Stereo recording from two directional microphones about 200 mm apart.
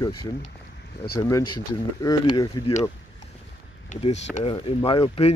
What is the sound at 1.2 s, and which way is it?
Speech, 20° left (ahead or behind).